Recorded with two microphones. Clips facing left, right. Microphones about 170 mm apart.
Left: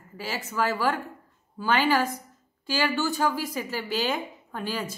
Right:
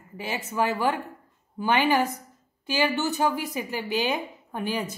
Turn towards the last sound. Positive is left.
turn(degrees=-20)  # may be behind; listen again after turning